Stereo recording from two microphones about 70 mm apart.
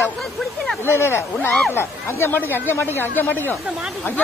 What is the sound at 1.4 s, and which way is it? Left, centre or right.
Speech, centre.